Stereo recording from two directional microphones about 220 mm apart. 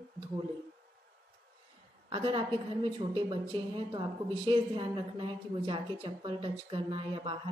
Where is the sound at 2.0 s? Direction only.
25° right (ahead or behind).